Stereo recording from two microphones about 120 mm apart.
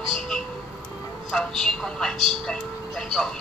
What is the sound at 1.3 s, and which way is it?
A woman's voice, 5° left (ahead or behind).